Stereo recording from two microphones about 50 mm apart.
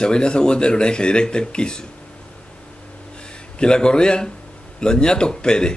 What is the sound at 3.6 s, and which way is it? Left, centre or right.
Speech, centre.